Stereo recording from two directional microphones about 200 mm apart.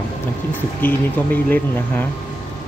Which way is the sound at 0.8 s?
10° left (ahead or behind).